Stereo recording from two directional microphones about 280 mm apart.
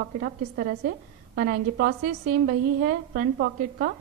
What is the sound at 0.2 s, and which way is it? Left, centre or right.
A woman's voice, right.